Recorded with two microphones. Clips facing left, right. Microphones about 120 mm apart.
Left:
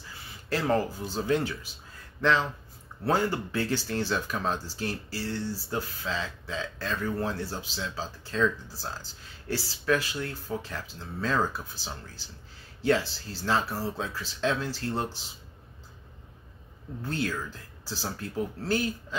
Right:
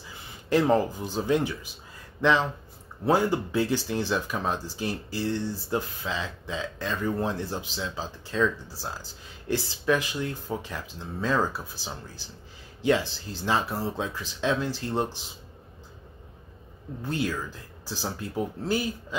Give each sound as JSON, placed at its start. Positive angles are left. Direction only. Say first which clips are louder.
{"t": 0.5, "sound": "speech", "louder": "right 5 dB", "side_deg": -15}
{"t": 17.0, "sound": "speech", "louder": "right 2 dB", "side_deg": -15}